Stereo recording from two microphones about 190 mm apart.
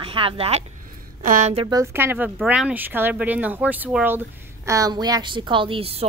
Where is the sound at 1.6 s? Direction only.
15° right (ahead or behind).